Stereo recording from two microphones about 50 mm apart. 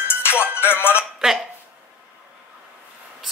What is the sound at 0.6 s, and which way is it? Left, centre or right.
Speech, left.